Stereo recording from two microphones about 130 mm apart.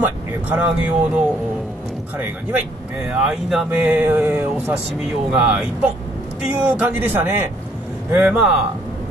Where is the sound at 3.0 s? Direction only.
5° right (ahead or behind).